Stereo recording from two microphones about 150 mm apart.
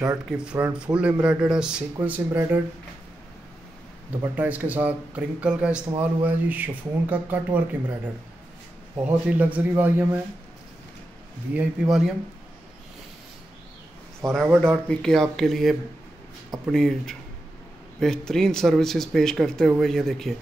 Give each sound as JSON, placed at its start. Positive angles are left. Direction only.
{"t": 0.4, "sound": "speech", "side_deg": -10}
{"t": 4.2, "sound": "speech", "side_deg": -10}
{"t": 11.5, "sound": "speech", "side_deg": -10}
{"t": 14.2, "sound": "a man's voice", "side_deg": -25}
{"t": 14.6, "sound": "speech", "side_deg": 5}